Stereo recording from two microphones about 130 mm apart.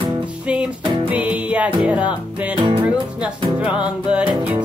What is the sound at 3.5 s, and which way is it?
Music, 10° right (ahead or behind).